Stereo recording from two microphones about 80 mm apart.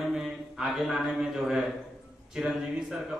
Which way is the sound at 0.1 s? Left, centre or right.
Centre.